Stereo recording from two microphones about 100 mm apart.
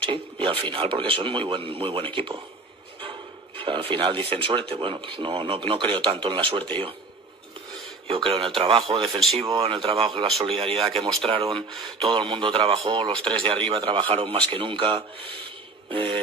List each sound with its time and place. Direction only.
0.0 s a man's voice: 65° right (ahead or behind)
3.6 s a man's voice: 60° right (ahead or behind)
4.7 s a man's voice: 55° right (ahead or behind)
8.1 s speech: 65° right (ahead or behind)
9.1 s speech: centre (ahead or behind)
9.4 s a man's voice: 70° right (ahead or behind)
13.0 s a man's voice: 55° right (ahead or behind)